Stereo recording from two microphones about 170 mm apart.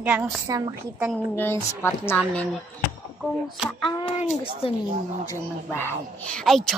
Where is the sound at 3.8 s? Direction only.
30° left (ahead or behind).